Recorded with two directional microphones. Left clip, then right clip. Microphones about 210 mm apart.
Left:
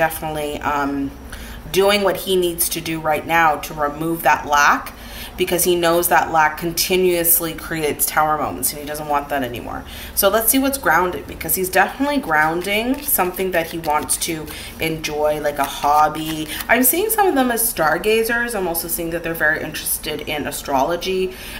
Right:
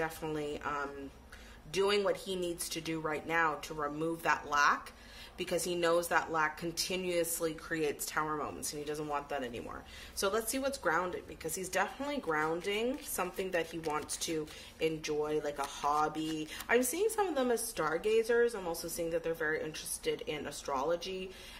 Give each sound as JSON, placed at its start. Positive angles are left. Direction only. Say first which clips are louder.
{"t": 0.0, "sound": "a woman's voice", "louder": "left 16 dB", "side_deg": -40}
{"t": 10.2, "sound": "a woman's voice", "louder": "left 17 dB", "side_deg": -45}